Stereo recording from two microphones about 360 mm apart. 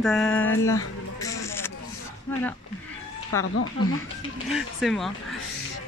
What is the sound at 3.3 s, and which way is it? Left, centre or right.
Speech, left.